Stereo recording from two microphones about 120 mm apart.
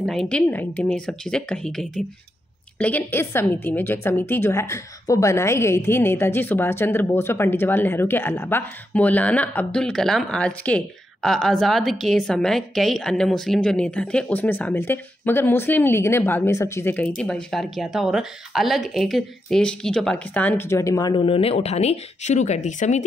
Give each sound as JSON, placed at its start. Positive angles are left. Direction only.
{"t": 0.0, "sound": "a woman's voice", "side_deg": 5}
{"t": 2.8, "sound": "a woman's voice", "side_deg": 15}
{"t": 16.9, "sound": "speech", "side_deg": 10}
{"t": 21.1, "sound": "speech", "side_deg": 45}